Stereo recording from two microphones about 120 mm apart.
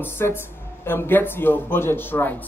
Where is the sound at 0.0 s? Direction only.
20° left (ahead or behind).